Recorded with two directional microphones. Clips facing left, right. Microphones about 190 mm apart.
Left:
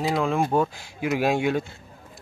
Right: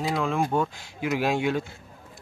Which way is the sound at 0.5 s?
30° left (ahead or behind).